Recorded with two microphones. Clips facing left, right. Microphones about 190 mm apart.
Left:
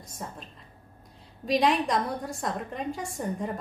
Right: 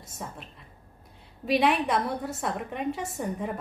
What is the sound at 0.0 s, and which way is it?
A woman's voice, 5° right (ahead or behind).